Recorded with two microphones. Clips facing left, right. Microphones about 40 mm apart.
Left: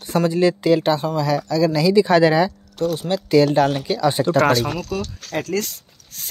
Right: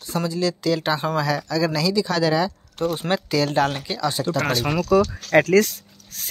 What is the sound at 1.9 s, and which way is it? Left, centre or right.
Speech, left.